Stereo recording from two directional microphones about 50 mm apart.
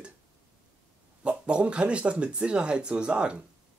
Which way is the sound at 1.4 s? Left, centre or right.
Right.